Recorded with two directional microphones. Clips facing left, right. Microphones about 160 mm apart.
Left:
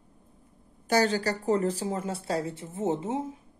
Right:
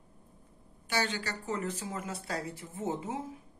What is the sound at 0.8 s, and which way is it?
Speech, 40° left (ahead or behind).